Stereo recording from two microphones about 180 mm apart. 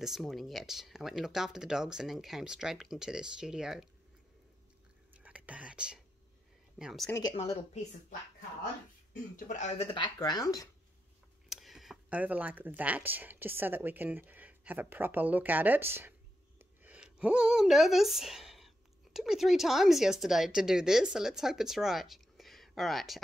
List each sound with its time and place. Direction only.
0.0 s speech: centre (ahead or behind)
5.2 s speech: 5° right (ahead or behind)
7.3 s speech: 35° left (ahead or behind)
9.5 s speech: 40° left (ahead or behind); by 10.7 s 20° left (ahead or behind)
11.4 s speech: centre (ahead or behind)